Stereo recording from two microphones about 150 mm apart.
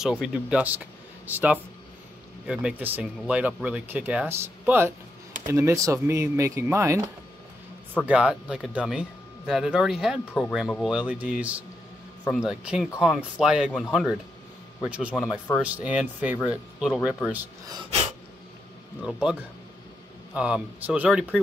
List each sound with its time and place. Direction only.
0.0 s speech: 5° right (ahead or behind)
8.1 s speech: 5° right (ahead or behind)
19.0 s speech: 5° right (ahead or behind)
20.3 s speech: 5° right (ahead or behind)